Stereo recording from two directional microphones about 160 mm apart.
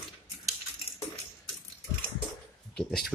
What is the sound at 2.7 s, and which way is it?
Speech, 5° left (ahead or behind).